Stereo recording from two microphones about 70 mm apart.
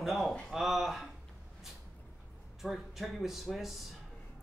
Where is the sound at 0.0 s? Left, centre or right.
Centre.